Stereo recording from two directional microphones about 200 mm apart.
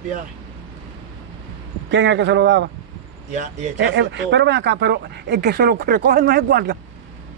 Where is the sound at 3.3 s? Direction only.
40° right (ahead or behind).